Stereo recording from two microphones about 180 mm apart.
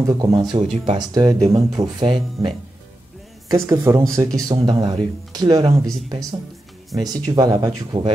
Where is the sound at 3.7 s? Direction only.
20° right (ahead or behind).